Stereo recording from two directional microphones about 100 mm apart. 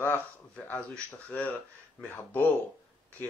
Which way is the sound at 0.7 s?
15° left (ahead or behind).